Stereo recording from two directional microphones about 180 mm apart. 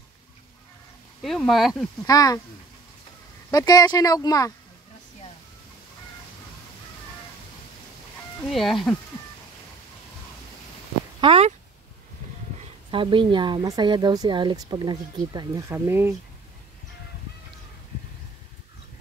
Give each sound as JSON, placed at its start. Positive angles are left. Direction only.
{"t": 1.2, "sound": "speech", "side_deg": 0}
{"t": 2.0, "sound": "speech", "side_deg": 20}
{"t": 3.5, "sound": "speech", "side_deg": 20}
{"t": 8.4, "sound": "speech", "side_deg": 0}
{"t": 11.1, "sound": "speech", "side_deg": -30}
{"t": 12.9, "sound": "a woman's voice", "side_deg": -30}